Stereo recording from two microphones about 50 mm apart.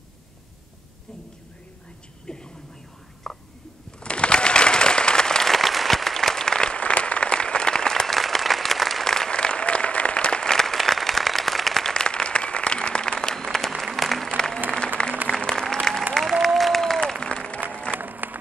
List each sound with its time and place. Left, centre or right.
2.2 s a sound: centre
3.3 s whispering: centre
4.0 s applause: left; by 11.9 s centre
11.9 s applause: centre
14.3 s applause: centre
17.9 s applause: right